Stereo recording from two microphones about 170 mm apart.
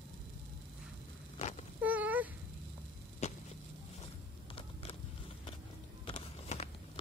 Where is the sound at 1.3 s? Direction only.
40° left (ahead or behind).